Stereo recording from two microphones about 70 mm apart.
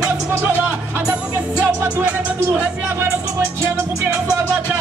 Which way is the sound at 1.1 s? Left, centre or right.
Right.